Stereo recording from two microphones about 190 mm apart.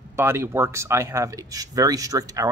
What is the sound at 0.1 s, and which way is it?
Speech, 15° right (ahead or behind).